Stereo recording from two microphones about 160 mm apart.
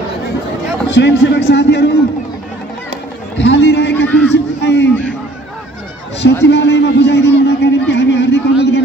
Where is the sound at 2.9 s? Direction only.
90° left.